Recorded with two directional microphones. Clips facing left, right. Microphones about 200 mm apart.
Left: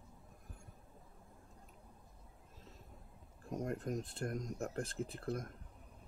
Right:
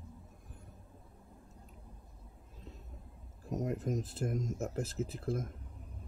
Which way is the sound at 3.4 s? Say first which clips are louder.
Right 4 dB; centre (ahead or behind).